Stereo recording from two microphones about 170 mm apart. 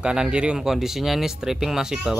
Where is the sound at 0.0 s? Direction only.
5° right (ahead or behind).